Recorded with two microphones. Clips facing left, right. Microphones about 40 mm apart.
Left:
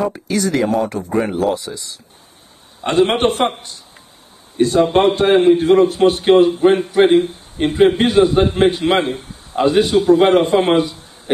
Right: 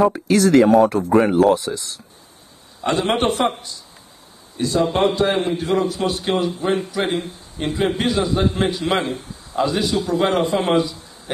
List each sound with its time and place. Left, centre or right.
0.0 s speech: centre
2.9 s a man's voice: left
4.6 s a man's voice: left